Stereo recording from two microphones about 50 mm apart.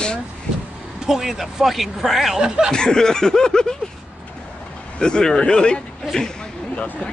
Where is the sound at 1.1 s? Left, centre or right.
Centre.